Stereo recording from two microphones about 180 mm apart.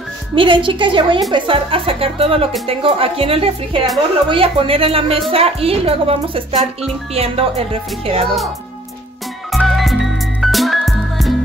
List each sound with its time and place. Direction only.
0.3 s a woman's voice: 30° right (ahead or behind)
9.5 s music: centre (ahead or behind)